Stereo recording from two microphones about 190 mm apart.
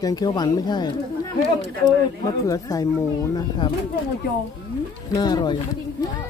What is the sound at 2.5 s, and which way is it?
Speech, 20° left (ahead or behind).